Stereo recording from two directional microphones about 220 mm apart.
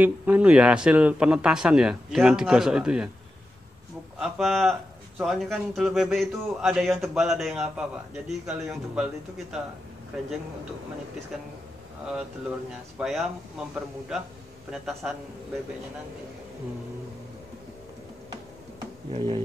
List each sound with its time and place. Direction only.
0.0 s speech: 10° right (ahead or behind)
4.2 s speech: centre (ahead or behind)
13.0 s speech: centre (ahead or behind)
19.1 s speech: 20° right (ahead or behind)